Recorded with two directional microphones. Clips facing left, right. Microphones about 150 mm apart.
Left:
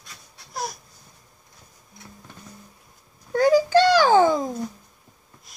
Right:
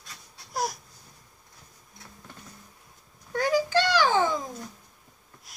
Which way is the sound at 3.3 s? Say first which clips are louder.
Left 7 dB; 35° left (ahead or behind).